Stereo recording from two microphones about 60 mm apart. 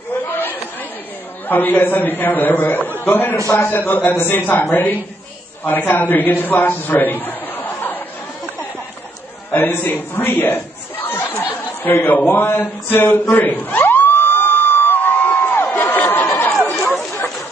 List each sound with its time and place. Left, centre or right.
0.3 s chatter: left
1.5 s a man's voice: left
9.5 s chatter: left
16.8 s a sound: left